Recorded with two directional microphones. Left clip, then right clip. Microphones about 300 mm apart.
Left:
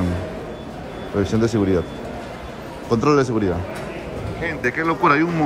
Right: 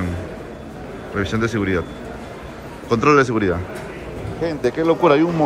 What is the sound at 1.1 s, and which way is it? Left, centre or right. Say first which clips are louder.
Speech: left 2 dB; centre.